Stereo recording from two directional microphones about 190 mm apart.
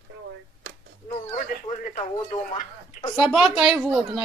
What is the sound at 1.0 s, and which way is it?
Speech, 40° left (ahead or behind).